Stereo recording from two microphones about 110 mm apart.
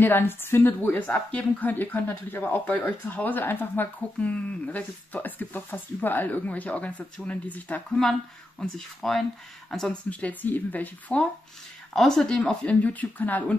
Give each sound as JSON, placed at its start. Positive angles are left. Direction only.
{"t": 0.0, "sound": "a woman's voice", "side_deg": 20}
{"t": 10.0, "sound": "a woman's voice", "side_deg": 15}
{"t": 11.9, "sound": "a woman's voice", "side_deg": 5}